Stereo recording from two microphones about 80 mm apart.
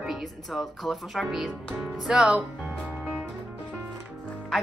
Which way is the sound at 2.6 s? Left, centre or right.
Centre.